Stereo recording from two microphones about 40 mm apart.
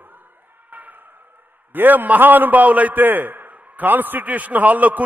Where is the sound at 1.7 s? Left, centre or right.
Right.